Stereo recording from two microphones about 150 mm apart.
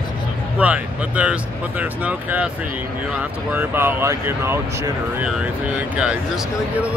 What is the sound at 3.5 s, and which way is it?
Speech, 15° right (ahead or behind).